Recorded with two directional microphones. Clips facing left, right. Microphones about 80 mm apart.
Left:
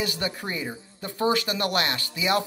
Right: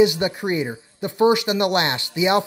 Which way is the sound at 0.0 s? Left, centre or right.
Centre.